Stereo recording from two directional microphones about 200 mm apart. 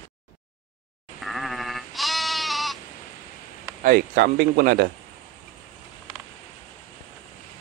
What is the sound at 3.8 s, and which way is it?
Speech, 50° right (ahead or behind).